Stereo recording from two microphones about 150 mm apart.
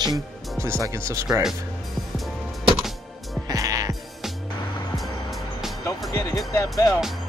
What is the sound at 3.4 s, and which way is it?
Music, 20° right (ahead or behind).